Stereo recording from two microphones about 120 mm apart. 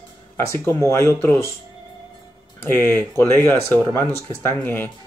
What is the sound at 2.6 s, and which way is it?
Speech, 15° left (ahead or behind).